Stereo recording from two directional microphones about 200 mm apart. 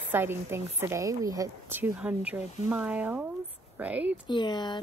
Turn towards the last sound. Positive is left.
turn(degrees=20)  # may be behind; listen again after turning